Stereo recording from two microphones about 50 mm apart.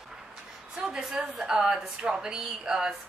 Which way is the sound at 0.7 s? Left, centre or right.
Centre.